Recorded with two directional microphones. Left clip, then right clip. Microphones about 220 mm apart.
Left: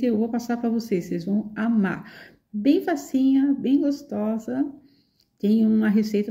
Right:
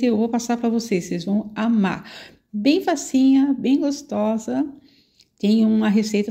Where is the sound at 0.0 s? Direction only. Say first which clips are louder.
Right 4 dB; 10° right (ahead or behind).